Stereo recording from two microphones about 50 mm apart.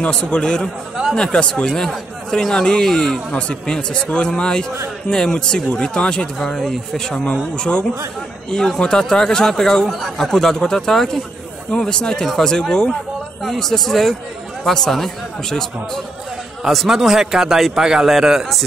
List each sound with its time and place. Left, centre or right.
0.0 s speech: left
6.5 s speech: centre
7.5 s speech: centre
16.7 s speech: centre